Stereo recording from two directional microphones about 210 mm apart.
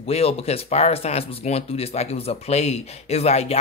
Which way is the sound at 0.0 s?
30° left (ahead or behind).